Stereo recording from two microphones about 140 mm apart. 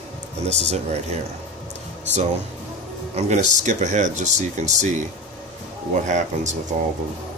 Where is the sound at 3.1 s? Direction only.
55° right (ahead or behind).